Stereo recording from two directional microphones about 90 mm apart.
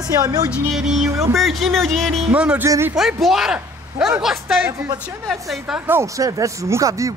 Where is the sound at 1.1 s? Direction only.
35° right (ahead or behind).